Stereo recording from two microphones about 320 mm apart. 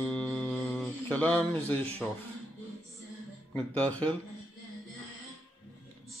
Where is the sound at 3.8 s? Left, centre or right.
Centre.